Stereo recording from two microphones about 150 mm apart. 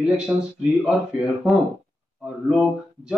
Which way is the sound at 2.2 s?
5° right (ahead or behind).